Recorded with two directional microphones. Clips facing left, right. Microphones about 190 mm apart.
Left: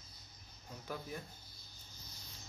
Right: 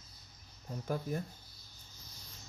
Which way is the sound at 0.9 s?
45° right (ahead or behind).